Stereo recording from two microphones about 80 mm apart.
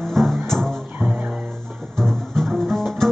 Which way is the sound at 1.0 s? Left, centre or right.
Right.